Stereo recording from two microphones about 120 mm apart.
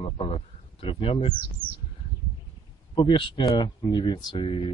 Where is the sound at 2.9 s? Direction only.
40° left (ahead or behind).